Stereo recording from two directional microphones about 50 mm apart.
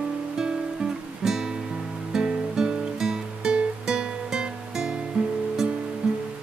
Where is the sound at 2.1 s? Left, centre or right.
Centre.